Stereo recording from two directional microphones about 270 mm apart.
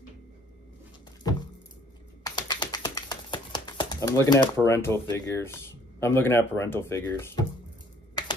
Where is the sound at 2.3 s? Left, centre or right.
Centre.